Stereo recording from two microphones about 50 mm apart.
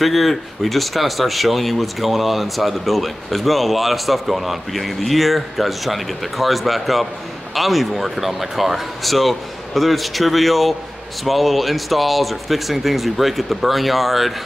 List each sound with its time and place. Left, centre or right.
0.0 s speech: centre